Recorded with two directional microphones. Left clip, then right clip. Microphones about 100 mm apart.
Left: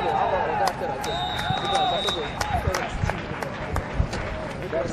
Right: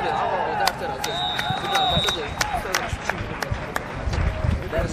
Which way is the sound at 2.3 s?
30° right (ahead or behind).